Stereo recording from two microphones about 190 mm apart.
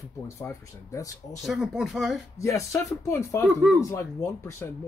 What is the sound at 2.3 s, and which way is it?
Speech, 15° left (ahead or behind).